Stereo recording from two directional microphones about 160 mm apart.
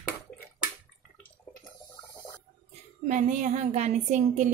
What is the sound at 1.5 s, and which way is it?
Water, 10° left (ahead or behind).